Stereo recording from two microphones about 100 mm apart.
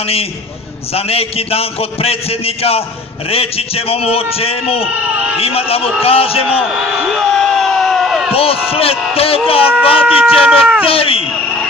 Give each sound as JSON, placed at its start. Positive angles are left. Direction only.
{"t": 0.0, "sound": "a man's voice", "side_deg": 80}
{"t": 4.8, "sound": "speech", "side_deg": -5}
{"t": 5.4, "sound": "a man's voice", "side_deg": 75}
{"t": 6.5, "sound": "a sound", "side_deg": -5}
{"t": 8.3, "sound": "a man's voice", "side_deg": 75}
{"t": 9.9, "sound": "speech", "side_deg": -10}
{"t": 10.9, "sound": "speech", "side_deg": 70}